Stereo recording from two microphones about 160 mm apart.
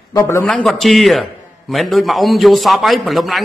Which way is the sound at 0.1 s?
20° left (ahead or behind).